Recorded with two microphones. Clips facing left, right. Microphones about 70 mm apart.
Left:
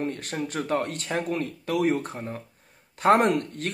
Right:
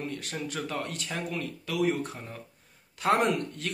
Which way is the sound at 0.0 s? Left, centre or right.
Left.